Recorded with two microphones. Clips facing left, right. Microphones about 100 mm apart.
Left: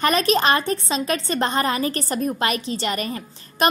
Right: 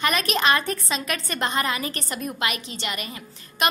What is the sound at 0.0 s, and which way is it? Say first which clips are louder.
A woman's voice: left 4 dB; 35° left (ahead or behind).